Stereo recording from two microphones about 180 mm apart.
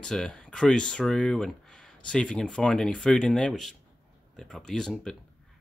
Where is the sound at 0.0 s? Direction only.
5° left (ahead or behind).